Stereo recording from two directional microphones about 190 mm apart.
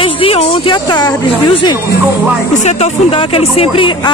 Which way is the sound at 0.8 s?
20° left (ahead or behind).